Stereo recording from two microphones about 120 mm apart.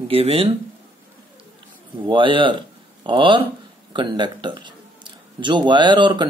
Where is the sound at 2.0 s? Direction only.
40° right (ahead or behind).